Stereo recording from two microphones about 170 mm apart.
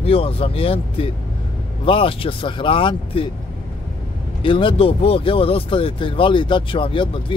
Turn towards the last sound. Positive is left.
turn(degrees=30)  # may be behind; listen again after turning